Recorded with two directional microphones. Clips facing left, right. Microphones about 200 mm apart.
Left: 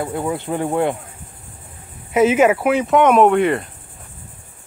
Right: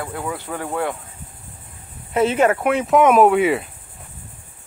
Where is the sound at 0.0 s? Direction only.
25° left (ahead or behind).